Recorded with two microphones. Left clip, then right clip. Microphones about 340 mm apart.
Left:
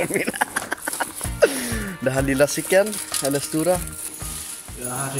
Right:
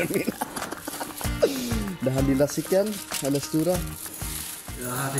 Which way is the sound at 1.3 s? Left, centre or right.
Left.